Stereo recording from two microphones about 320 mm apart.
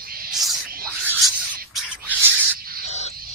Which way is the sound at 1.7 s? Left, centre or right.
Centre.